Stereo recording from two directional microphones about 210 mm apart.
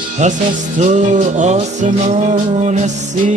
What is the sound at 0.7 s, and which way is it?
Music, 35° right (ahead or behind).